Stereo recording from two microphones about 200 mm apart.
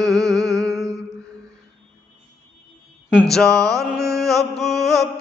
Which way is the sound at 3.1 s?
Centre (ahead or behind).